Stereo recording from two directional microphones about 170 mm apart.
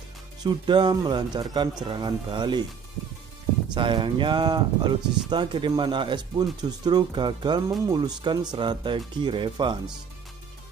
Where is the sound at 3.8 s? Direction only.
30° right (ahead or behind).